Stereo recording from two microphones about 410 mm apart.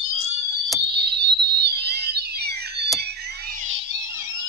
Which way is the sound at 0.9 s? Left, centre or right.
Right.